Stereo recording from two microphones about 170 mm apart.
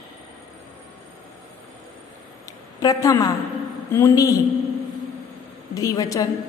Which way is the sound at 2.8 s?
20° left (ahead or behind).